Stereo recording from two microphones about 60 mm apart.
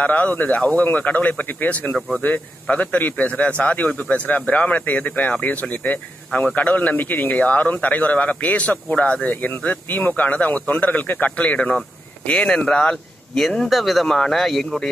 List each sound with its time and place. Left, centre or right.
0.0 s a man's voice: left
13.4 s speech: centre
14.0 s speech: centre